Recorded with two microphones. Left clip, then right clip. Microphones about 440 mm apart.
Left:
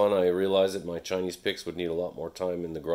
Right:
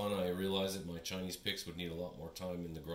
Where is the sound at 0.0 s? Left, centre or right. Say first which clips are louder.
Left 14 dB; centre.